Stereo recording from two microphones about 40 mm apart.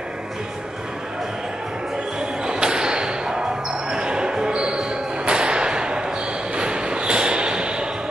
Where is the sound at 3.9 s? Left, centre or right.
Right.